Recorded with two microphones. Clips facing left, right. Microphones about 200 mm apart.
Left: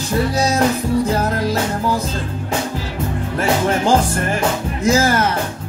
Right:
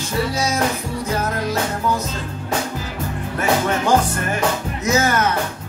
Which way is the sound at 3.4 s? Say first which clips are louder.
Left 2 dB; 30° left (ahead or behind).